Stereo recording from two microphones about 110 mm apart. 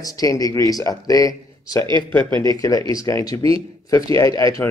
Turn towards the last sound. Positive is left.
turn(degrees=30)  # may be behind; listen again after turning